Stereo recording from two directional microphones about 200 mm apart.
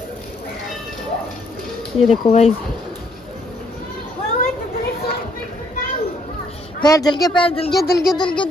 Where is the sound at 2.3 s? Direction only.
30° left (ahead or behind).